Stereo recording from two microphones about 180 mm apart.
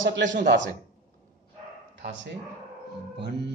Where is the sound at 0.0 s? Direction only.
90° right.